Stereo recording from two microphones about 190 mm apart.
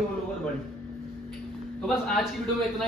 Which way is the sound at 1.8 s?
Centre (ahead or behind).